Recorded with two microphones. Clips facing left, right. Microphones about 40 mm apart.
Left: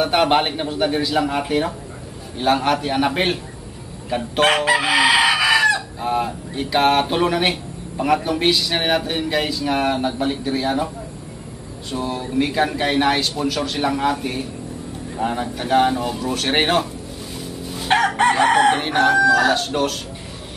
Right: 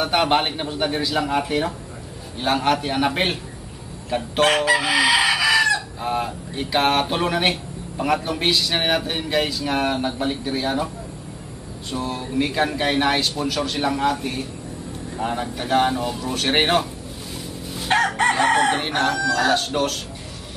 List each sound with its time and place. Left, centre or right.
0.0 s a man's voice: centre
1.4 s chicken: centre
2.3 s a man's voice: centre
4.4 s chicken: centre
5.8 s a man's voice: centre
11.9 s a man's voice: centre
17.8 s crowing: left
18.3 s chicken: centre
18.8 s a man's voice: centre
19.1 s chicken: centre
19.5 s a man's voice: centre